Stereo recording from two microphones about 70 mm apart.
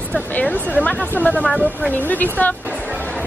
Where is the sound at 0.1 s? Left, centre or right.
Left.